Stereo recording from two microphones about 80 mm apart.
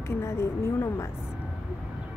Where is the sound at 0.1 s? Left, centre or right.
Left.